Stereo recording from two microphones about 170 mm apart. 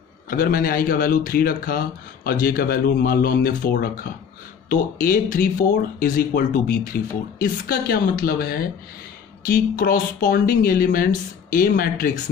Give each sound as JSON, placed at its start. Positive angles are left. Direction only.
{"t": 0.3, "sound": "speech", "side_deg": 55}